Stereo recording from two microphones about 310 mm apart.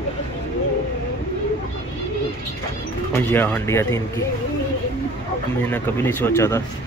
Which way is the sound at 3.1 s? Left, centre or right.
Centre.